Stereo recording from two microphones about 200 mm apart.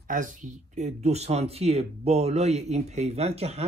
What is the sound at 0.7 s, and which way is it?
Speech, 35° right (ahead or behind).